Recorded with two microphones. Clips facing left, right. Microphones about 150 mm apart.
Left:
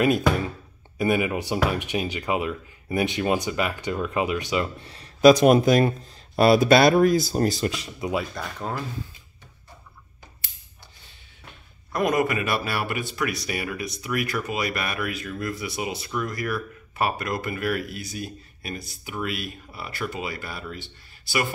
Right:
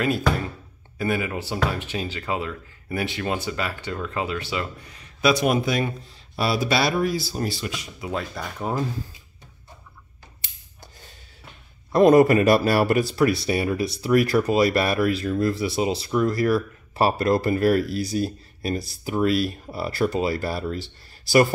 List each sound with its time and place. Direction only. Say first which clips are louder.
0.9 s speech: left 3 dB; 15° left (ahead or behind); by 7.7 s 40° left (ahead or behind)
8.1 s speech: even; centre (ahead or behind)
8.5 s speech: right 5 dB; 15° right (ahead or behind)
11.9 s speech: right 9 dB; 30° right (ahead or behind)